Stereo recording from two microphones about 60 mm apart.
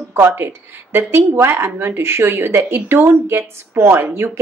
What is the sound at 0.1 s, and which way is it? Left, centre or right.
Speech, right.